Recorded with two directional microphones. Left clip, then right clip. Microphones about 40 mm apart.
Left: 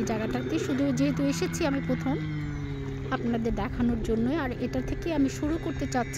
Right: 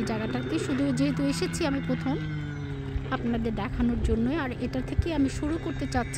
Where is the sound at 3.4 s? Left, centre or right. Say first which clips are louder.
Left 1 dB; left.